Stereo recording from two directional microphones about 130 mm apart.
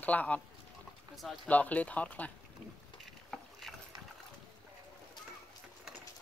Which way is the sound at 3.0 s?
Centre (ahead or behind).